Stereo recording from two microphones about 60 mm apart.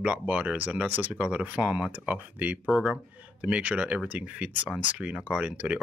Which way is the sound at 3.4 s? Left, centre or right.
Right.